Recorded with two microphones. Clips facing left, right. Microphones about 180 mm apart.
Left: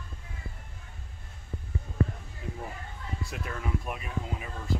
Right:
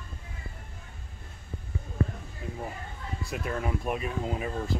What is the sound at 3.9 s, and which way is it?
Speech, 35° right (ahead or behind).